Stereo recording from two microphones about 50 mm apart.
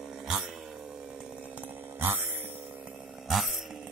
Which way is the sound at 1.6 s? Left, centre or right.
Right.